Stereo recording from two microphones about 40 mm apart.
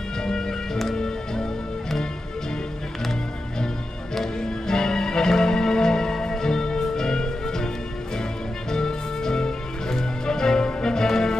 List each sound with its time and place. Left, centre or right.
0.2 s music: centre
4.1 s music: centre